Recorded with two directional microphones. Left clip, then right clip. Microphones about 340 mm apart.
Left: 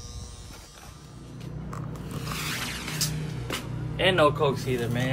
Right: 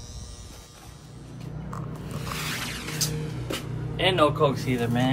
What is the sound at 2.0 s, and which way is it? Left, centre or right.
Vehicle, centre.